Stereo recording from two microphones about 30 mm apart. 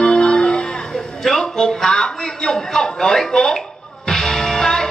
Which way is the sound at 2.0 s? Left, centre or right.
Left.